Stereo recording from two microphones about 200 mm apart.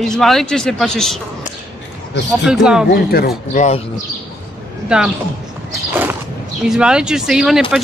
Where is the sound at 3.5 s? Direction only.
35° left (ahead or behind).